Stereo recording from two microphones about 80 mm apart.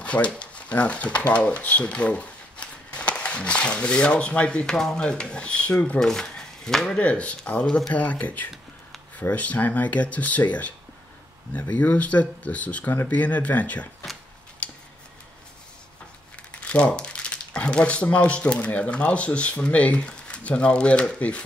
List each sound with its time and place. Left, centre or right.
0.0 s speech: centre
7.9 s speech: centre
11.7 s speech: centre
16.5 s speech: centre